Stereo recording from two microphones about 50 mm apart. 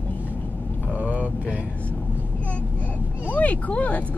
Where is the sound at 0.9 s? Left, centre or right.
Right.